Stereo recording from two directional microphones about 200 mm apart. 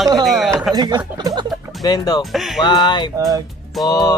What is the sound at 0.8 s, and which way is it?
Speech, 20° right (ahead or behind).